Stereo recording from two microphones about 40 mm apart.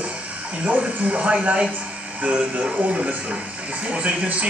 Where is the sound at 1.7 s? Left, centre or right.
Right.